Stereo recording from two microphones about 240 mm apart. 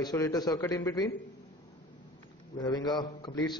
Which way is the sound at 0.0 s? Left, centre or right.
Centre.